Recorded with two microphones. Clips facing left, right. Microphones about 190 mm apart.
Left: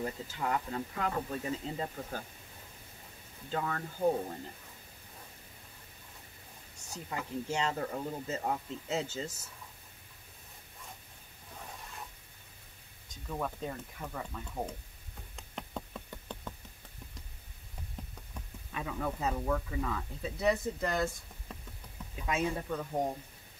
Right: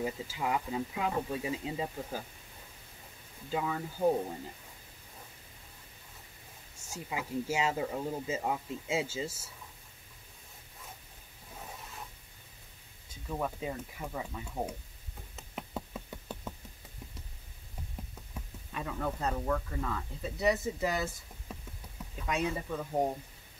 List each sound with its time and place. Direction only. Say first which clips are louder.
0.0 s speech: right 2 dB; 10° right (ahead or behind)
3.4 s speech: right 2 dB; 10° right (ahead or behind)
6.9 s speech: right 2 dB; 10° right (ahead or behind)
13.1 s speech: right 2 dB; 5° right (ahead or behind)
15.3 s a sound: right 2 dB; 5° right (ahead or behind)
18.3 s speech: even; centre (ahead or behind)